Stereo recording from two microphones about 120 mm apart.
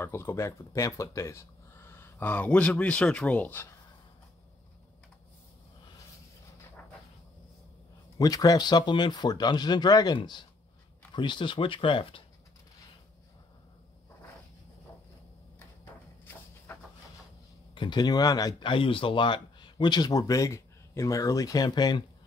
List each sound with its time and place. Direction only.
0.0 s speech: 20° left (ahead or behind)
8.2 s speech: 30° left (ahead or behind)
11.1 s speech: 40° left (ahead or behind)
17.7 s speech: 40° left (ahead or behind)